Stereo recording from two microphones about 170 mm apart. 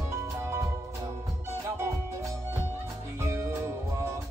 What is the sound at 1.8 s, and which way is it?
Music, 15° right (ahead or behind).